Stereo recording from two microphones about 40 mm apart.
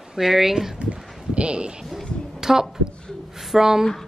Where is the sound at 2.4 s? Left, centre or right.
Centre.